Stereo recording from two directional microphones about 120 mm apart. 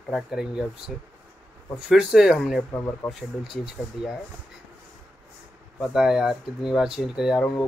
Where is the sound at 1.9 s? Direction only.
5° right (ahead or behind).